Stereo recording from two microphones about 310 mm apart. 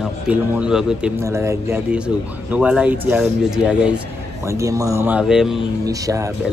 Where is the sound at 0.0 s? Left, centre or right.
Centre.